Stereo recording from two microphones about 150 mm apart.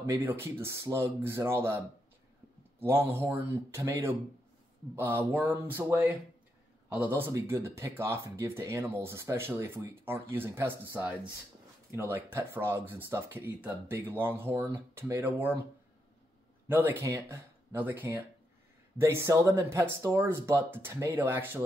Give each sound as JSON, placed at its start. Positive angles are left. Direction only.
{"t": 0.0, "sound": "speech", "side_deg": -20}
{"t": 7.2, "sound": "speech", "side_deg": -15}
{"t": 16.6, "sound": "speech", "side_deg": -15}